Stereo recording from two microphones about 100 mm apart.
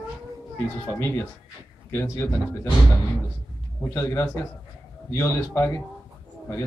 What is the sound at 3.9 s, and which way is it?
A man's voice, 25° left (ahead or behind).